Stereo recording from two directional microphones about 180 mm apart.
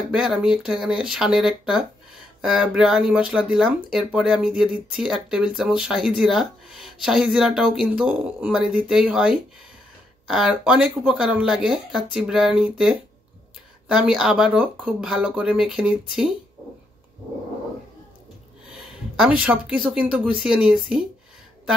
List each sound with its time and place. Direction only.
0.1 s speech: 5° right (ahead or behind)
13.9 s speech: 5° right (ahead or behind)
18.7 s speech: 5° right (ahead or behind)